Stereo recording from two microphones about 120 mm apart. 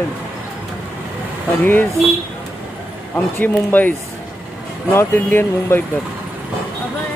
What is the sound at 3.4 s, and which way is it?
Speech, 15° left (ahead or behind).